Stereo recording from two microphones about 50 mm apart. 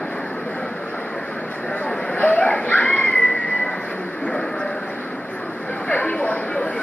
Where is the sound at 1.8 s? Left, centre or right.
Left.